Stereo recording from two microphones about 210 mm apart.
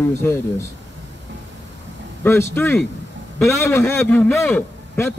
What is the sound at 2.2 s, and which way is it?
A man's voice, 10° left (ahead or behind).